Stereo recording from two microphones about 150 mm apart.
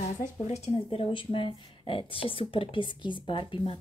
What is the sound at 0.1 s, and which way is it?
Speech, 50° left (ahead or behind).